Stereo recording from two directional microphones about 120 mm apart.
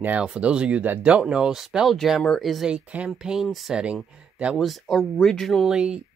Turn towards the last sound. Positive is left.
turn(degrees=-5)  # may be behind; listen again after turning